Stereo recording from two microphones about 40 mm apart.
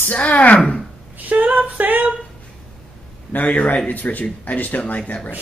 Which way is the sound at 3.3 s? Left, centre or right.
Left.